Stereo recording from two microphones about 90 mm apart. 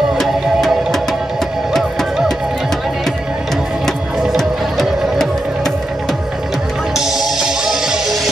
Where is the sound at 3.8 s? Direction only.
5° left (ahead or behind).